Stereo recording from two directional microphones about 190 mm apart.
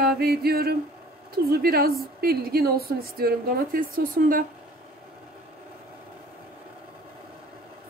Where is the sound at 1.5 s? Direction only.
55° right (ahead or behind).